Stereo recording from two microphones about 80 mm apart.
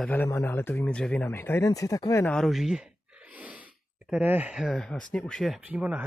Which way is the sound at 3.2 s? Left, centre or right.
Centre.